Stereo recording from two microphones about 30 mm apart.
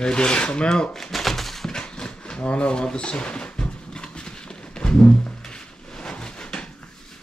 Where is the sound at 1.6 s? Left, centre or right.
Left.